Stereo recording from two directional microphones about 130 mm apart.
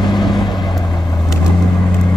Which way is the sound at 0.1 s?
35° left (ahead or behind).